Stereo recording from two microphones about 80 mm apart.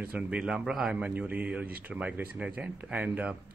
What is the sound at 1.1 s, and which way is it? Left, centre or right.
A woman's voice, right.